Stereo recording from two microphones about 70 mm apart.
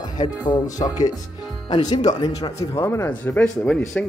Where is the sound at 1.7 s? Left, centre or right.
Left.